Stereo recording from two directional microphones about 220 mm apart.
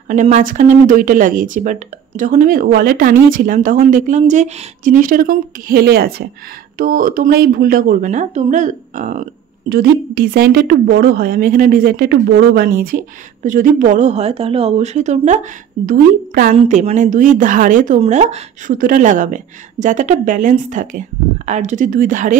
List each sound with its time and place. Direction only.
0.1 s speech: 35° right (ahead or behind)